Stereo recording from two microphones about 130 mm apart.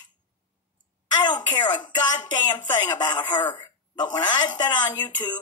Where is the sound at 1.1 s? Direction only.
35° left (ahead or behind).